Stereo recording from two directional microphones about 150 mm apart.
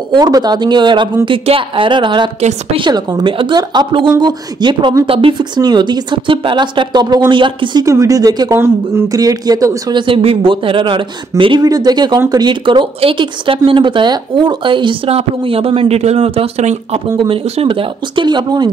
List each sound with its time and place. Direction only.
0.1 s speech: 25° right (ahead or behind)